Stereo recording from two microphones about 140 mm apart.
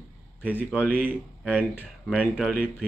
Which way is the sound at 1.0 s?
10° right (ahead or behind).